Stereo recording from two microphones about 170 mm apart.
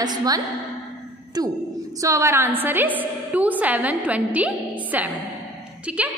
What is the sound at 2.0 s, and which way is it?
A woman's voice, 20° right (ahead or behind).